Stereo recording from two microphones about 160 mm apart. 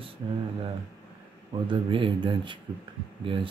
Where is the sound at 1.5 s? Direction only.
30° right (ahead or behind).